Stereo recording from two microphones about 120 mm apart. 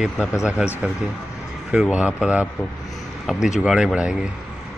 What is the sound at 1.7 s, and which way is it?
A man's voice, 10° right (ahead or behind).